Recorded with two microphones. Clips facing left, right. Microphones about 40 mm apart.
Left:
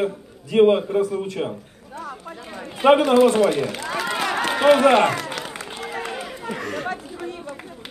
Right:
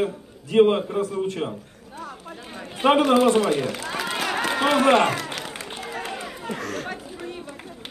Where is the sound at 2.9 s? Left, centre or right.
Centre.